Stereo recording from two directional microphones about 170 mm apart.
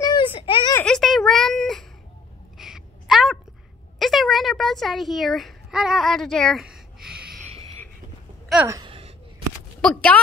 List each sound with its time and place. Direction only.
0.0 s baby cry: 25° left (ahead or behind)
0.7 s a sound: 5° left (ahead or behind)
8.6 s speech: 20° right (ahead or behind)
9.8 s speech: 5° left (ahead or behind)